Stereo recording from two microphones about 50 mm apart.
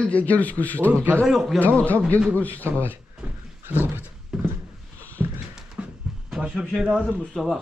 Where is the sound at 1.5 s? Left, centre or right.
Left.